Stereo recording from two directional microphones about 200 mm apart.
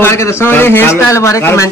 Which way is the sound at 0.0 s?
15° left (ahead or behind).